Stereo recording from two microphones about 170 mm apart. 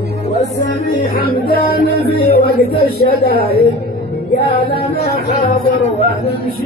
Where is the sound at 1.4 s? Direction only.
60° left (ahead or behind).